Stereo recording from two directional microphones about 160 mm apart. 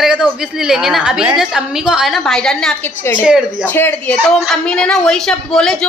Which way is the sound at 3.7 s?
10° left (ahead or behind).